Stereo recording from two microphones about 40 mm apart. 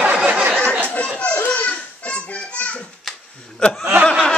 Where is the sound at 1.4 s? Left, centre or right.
Left.